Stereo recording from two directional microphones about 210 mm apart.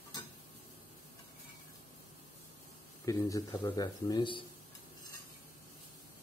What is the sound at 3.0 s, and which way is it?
Speech, 15° left (ahead or behind).